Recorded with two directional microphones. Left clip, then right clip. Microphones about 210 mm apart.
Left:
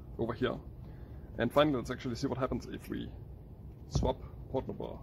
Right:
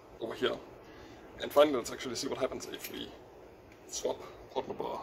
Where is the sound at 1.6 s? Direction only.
20° left (ahead or behind).